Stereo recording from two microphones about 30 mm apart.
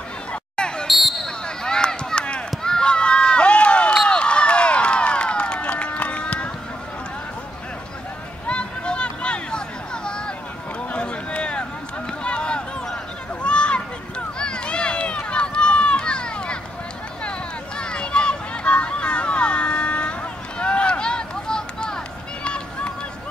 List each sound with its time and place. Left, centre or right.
0.3 s a sound: left
0.8 s basketball bounce: centre
1.2 s basketball bounce: left
2.6 s run: left
8.5 s a sound: left
10.0 s vehicle: left
10.9 s run: left
12.2 s a sound: left
22.4 s run: left